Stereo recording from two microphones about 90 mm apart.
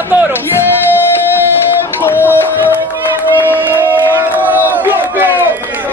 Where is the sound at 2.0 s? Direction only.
25° left (ahead or behind).